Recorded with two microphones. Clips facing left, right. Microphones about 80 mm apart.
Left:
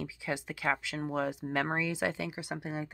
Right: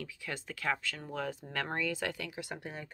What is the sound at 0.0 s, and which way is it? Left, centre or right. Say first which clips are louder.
Speech: left 5 dB; centre.